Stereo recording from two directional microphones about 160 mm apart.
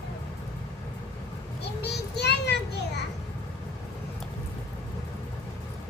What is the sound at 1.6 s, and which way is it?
Children playing, 90° left.